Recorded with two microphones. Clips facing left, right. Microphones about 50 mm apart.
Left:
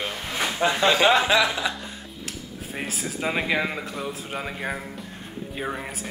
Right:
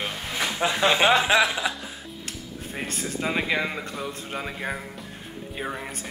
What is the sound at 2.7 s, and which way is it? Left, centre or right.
Speech, centre.